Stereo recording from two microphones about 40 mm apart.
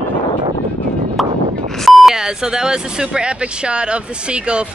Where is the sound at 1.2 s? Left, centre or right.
Centre.